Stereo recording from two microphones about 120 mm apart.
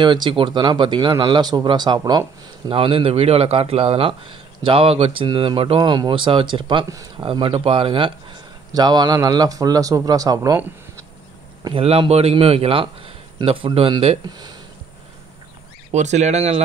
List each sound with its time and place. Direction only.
0.0 s speech: 40° right (ahead or behind)
2.7 s a man's voice: 50° right (ahead or behind)
6.9 s speech: 30° right (ahead or behind)
7.2 s speech: 45° right (ahead or behind); by 10.6 s 30° right (ahead or behind)
11.7 s a man's voice: 50° right (ahead or behind); by 14.6 s 35° right (ahead or behind)
15.9 s speech: 70° right (ahead or behind)